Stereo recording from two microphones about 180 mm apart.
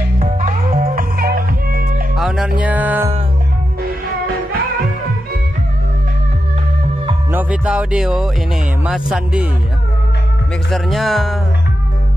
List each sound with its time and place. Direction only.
0.2 s music: 50° right (ahead or behind)
2.1 s music: centre (ahead or behind)
7.3 s music: 5° right (ahead or behind)
10.7 s speech: centre (ahead or behind)